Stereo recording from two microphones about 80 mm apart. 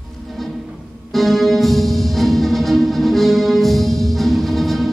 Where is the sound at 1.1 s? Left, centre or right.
Centre.